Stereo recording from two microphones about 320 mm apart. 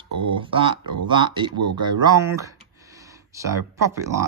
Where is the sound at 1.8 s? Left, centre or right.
Centre.